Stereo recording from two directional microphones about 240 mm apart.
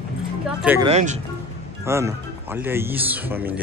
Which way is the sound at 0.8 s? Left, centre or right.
Right.